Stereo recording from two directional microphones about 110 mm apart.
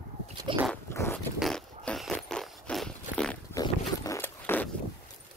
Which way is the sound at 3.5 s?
30° left (ahead or behind).